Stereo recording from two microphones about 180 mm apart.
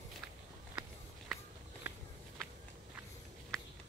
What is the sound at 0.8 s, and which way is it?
Walk, 5° right (ahead or behind).